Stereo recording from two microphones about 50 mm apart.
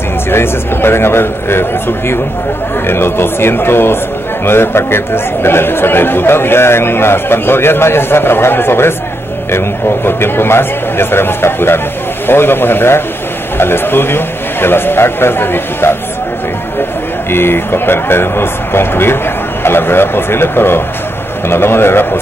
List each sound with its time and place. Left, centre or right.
0.3 s a man's voice: left
10.0 s a man's voice: left
17.3 s a man's voice: left